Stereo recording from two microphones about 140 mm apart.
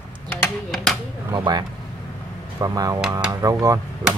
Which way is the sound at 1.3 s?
35° right (ahead or behind).